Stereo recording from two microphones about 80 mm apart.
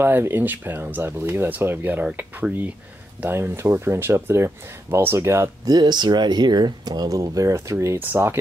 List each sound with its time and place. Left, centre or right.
0.0 s speech: right
3.2 s speech: right
5.7 s speech: right
8.0 s speech: right